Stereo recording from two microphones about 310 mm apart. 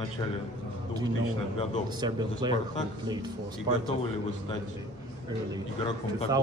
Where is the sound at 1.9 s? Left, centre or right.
Centre.